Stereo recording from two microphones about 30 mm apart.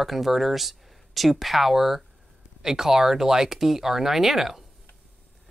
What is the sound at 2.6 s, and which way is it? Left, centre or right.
Speech, centre.